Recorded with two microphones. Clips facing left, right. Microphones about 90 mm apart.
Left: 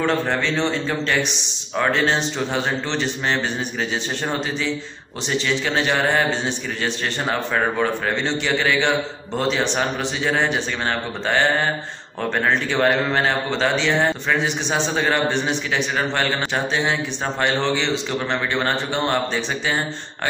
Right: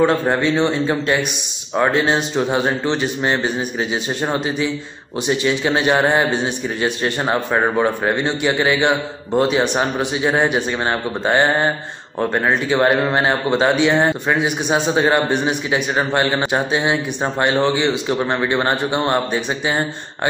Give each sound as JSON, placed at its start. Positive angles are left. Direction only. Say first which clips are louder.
{"t": 0.0, "sound": "speech", "louder": "right 5 dB", "side_deg": -15}